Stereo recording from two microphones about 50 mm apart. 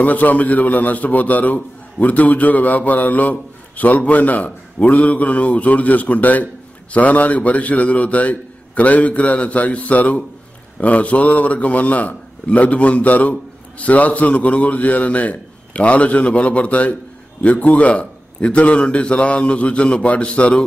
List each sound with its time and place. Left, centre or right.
0.0 s a man's voice: left